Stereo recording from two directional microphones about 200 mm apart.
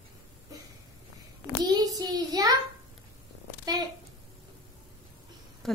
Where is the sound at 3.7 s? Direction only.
20° right (ahead or behind).